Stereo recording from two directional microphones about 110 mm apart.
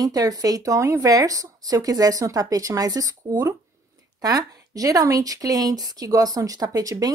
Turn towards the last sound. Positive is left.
turn(degrees=-35)  # may be behind; listen again after turning